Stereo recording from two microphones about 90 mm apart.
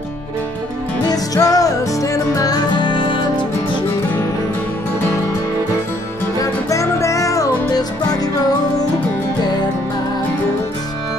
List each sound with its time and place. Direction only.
1.0 s music: 45° left (ahead or behind); by 3.2 s 60° left (ahead or behind)
6.4 s music: 35° left (ahead or behind)